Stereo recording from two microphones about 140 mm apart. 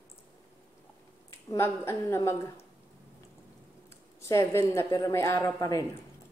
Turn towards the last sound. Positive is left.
turn(degrees=25)  # may be behind; listen again after turning